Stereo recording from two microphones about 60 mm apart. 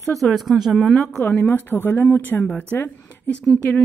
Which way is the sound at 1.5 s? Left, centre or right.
Left.